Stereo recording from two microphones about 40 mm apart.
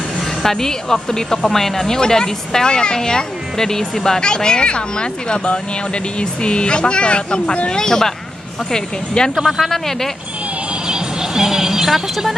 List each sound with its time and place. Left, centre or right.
0.4 s speech: centre; by 7.7 s left
7.7 s speech: centre
9.4 s a man's voice: centre
9.7 s speech: centre
10.9 s music: centre